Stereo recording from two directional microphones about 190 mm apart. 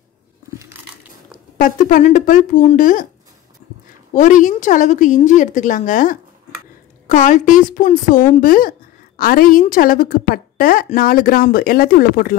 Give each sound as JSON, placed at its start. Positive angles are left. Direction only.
{"t": 1.6, "sound": "a woman's voice", "side_deg": 45}
{"t": 4.1, "sound": "a woman's voice", "side_deg": 40}